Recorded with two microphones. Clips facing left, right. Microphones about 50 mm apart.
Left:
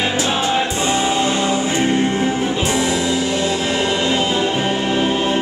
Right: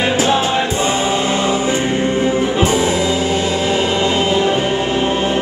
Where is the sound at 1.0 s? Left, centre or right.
Centre.